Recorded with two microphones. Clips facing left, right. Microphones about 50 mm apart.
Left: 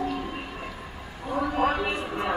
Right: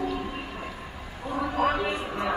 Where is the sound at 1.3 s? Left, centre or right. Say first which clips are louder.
Left 1 dB; centre.